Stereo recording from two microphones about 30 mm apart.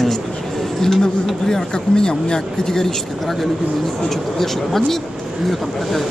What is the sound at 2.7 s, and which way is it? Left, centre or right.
Speech, centre.